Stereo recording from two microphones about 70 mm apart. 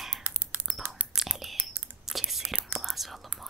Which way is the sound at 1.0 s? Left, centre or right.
Centre.